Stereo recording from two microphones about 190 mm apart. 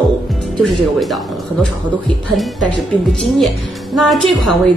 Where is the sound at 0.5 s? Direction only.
Centre (ahead or behind).